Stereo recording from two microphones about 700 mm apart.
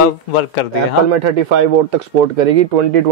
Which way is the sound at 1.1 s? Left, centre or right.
Right.